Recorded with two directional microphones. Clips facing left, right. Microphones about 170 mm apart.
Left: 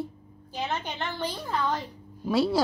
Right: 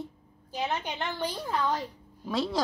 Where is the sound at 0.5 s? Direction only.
10° right (ahead or behind).